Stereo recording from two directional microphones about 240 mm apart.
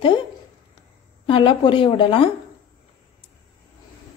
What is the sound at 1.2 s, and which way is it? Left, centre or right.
A woman's voice, left.